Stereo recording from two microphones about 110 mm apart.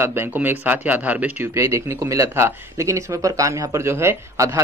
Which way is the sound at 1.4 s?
25° right (ahead or behind).